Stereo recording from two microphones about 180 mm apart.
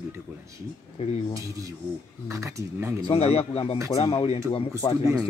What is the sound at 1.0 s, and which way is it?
Speech, 35° left (ahead or behind).